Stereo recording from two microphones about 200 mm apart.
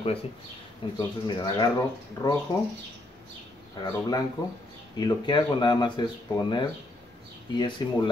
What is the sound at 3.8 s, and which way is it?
Speech, 20° left (ahead or behind).